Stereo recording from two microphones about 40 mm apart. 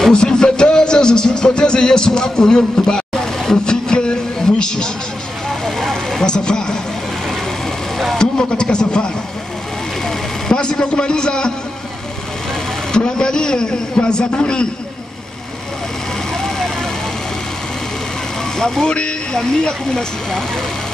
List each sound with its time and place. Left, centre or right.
0.0 s music: centre
5.5 s vehicle: centre
6.2 s a man's voice: left
8.2 s a man's voice: centre
10.0 s vehicle: centre
12.9 s a man's voice: left
16.4 s vehicle: centre
18.6 s a man's voice: centre